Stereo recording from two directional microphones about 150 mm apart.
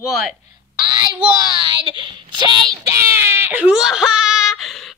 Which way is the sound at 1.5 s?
30° right (ahead or behind).